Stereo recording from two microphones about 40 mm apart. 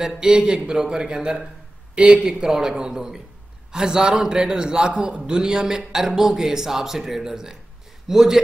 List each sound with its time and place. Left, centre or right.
0.0 s speech: centre
2.2 s a man's voice: centre